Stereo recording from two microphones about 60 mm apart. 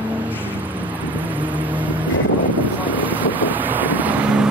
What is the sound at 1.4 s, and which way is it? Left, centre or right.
Vehicle, right.